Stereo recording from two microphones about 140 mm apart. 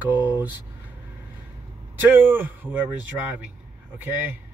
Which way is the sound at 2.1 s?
15° right (ahead or behind).